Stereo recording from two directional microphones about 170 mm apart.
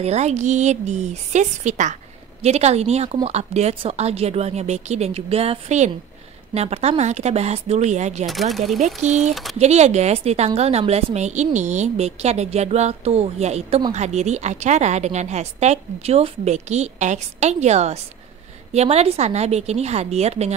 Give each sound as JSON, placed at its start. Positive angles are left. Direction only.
{"t": 0.0, "sound": "a woman's voice", "side_deg": -40}
{"t": 8.3, "sound": "speech", "side_deg": 0}
{"t": 8.7, "sound": "a woman's voice", "side_deg": -45}
{"t": 9.3, "sound": "speech", "side_deg": 0}
{"t": 9.6, "sound": "a woman's voice", "side_deg": -40}